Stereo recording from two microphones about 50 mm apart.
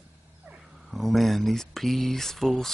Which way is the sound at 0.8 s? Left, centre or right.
Centre.